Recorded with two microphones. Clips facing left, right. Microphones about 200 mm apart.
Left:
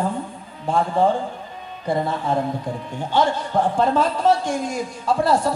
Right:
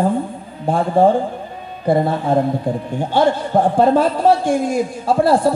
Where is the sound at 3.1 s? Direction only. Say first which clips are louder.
Right 5 dB; 50° right (ahead or behind).